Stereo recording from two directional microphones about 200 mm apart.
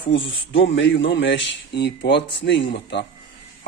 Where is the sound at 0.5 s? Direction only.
65° left (ahead or behind).